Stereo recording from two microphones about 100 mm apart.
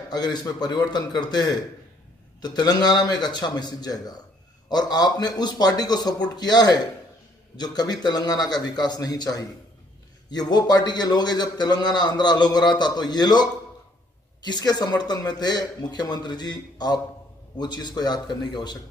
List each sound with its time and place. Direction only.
0.1 s a man's voice: 45° left (ahead or behind)